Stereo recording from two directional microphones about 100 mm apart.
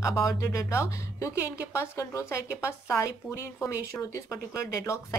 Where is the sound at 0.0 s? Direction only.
30° left (ahead or behind).